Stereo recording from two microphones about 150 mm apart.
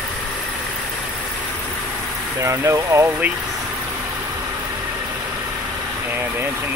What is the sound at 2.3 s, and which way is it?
Speech, 15° right (ahead or behind).